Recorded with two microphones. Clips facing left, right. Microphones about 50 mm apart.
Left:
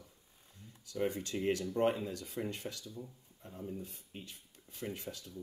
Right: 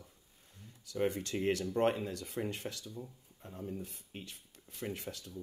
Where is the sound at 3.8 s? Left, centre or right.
Right.